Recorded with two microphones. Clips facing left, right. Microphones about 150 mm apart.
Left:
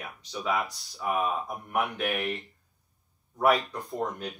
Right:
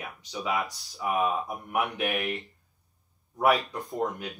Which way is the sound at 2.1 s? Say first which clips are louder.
Even; centre (ahead or behind).